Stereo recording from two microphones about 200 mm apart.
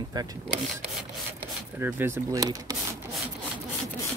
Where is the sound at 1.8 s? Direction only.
10° right (ahead or behind).